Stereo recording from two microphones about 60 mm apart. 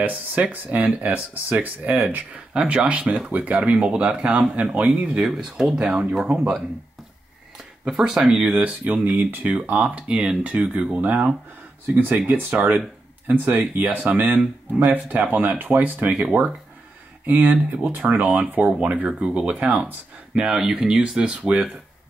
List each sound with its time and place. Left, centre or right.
0.0 s speech: right
5.2 s speech: centre
7.8 s speech: centre
17.3 s speech: right
20.3 s speech: centre